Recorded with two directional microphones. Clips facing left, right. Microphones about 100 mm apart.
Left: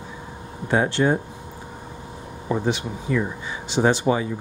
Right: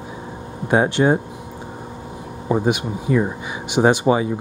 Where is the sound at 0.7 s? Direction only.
20° right (ahead or behind).